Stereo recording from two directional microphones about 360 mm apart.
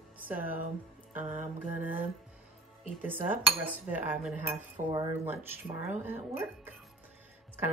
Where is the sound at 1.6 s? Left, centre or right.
Centre.